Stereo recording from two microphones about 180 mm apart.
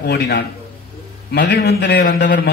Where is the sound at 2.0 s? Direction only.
55° left (ahead or behind).